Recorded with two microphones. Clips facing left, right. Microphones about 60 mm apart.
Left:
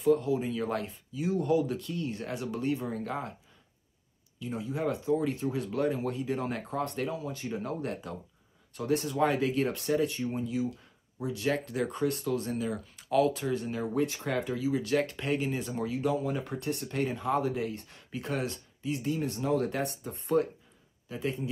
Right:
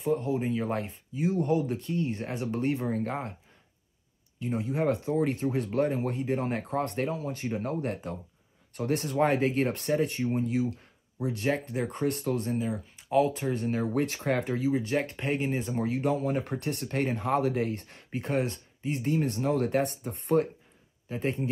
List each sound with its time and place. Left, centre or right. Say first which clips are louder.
0.0 s speech: left 2 dB; right
4.4 s speech: right 4 dB; right
11.4 s speech: even; right
11.9 s speech: right 2 dB; right
12.4 s speech: right 2 dB; right
14.7 s speech: left 2 dB; right
15.9 s speech: right 2 dB; right